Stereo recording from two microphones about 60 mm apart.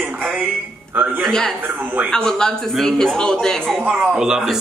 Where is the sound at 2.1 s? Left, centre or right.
Centre.